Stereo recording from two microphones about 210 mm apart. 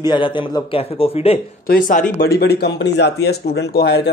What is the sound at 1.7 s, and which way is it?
A man's voice, 40° left (ahead or behind).